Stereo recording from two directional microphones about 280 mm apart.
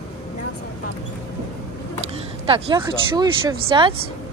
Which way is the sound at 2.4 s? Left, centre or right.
Centre.